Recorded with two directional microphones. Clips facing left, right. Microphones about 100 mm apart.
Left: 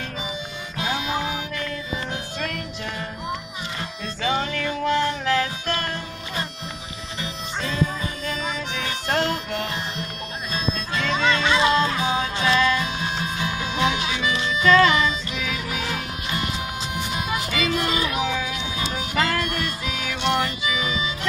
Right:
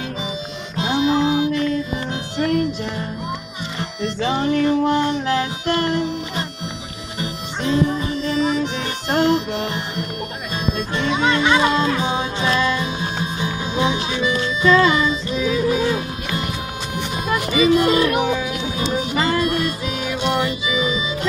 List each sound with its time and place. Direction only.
0.7 s music: 30° right (ahead or behind)
4.2 s music: 25° right (ahead or behind)
7.6 s music: 20° right (ahead or behind)
11.4 s music: 50° right (ahead or behind)
12.0 s music: 20° right (ahead or behind)
13.9 s music: 40° right (ahead or behind)
14.9 s music: 30° right (ahead or behind)
17.5 s music: 15° right (ahead or behind)
17.8 s music: 50° right (ahead or behind)
18.8 s music: 25° right (ahead or behind)
20.0 s music: 5° right (ahead or behind)